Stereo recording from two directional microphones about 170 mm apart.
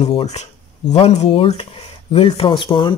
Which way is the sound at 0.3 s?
40° left (ahead or behind).